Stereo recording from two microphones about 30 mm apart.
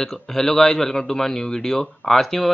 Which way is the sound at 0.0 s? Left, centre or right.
Centre.